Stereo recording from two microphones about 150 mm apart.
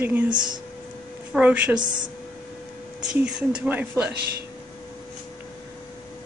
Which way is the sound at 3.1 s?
5° right (ahead or behind).